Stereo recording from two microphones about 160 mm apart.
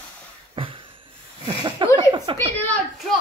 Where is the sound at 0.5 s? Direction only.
30° right (ahead or behind).